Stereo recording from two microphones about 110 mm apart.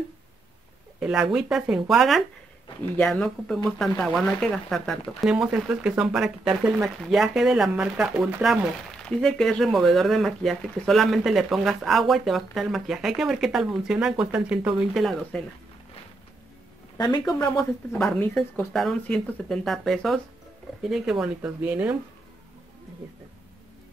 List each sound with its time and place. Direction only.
0.9 s speech: 5° right (ahead or behind)
8.9 s speech: 5° left (ahead or behind)
15.0 s speech: centre (ahead or behind)
16.9 s speech: 35° left (ahead or behind)
17.6 s speech: centre (ahead or behind); by 21.9 s 15° right (ahead or behind)